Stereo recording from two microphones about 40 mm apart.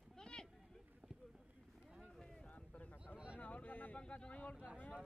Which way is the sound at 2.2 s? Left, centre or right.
Left.